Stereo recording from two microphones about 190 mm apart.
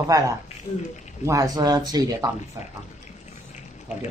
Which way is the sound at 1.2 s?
15° right (ahead or behind).